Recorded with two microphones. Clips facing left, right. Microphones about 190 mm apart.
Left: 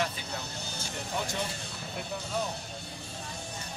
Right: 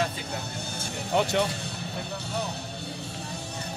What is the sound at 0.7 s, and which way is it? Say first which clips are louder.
Speech: right 9 dB; 60° right (ahead or behind).